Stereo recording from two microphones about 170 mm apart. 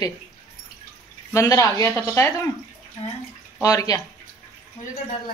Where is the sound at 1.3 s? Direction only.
20° left (ahead or behind).